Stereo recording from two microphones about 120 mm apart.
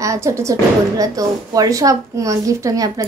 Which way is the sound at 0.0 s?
25° right (ahead or behind).